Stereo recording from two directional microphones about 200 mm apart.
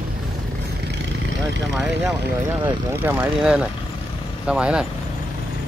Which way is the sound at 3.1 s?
5° right (ahead or behind).